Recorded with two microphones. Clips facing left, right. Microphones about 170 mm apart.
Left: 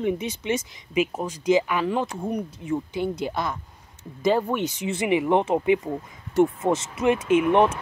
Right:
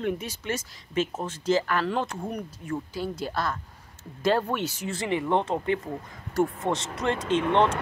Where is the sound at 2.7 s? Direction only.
20° left (ahead or behind).